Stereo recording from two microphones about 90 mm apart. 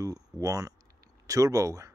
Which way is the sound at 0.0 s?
40° right (ahead or behind).